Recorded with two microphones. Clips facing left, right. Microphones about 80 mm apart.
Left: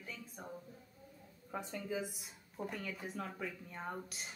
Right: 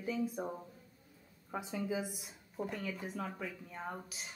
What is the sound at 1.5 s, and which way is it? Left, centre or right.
A woman's voice, centre.